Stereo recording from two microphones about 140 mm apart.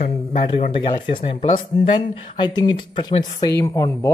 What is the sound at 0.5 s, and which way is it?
Speech, 40° left (ahead or behind).